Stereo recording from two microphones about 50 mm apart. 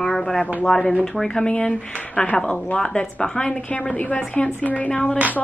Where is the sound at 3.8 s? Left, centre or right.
Left.